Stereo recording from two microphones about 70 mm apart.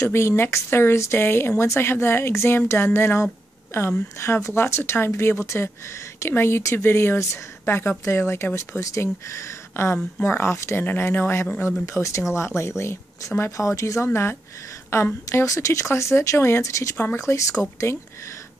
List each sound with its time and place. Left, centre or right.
0.0 s a woman's voice: left
11.9 s a woman's voice: left
15.3 s speech: left
16.9 s a woman's voice: left
17.2 s a woman's voice: left